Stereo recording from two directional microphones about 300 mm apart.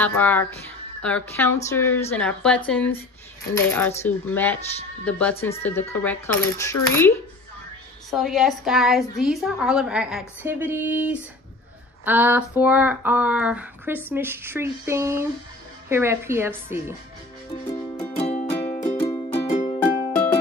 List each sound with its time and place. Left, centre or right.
0.0 s a woman's voice: centre
5.6 s a woman's voice: centre
12.0 s a sound: centre
18.1 s music: left